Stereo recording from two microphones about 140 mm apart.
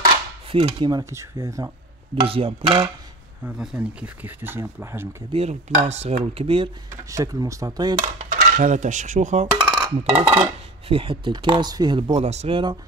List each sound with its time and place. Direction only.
0.0 s a sound: 40° right (ahead or behind); by 1.7 s 20° right (ahead or behind)
2.2 s dishes: 40° right (ahead or behind)
3.4 s speech: 5° right (ahead or behind)
5.3 s speech: 50° right (ahead or behind)
6.2 s dishes: 40° right (ahead or behind)
6.9 s speech: 25° right (ahead or behind)
8.0 s coin: 65° right (ahead or behind)
10.1 s dishes: 45° right (ahead or behind)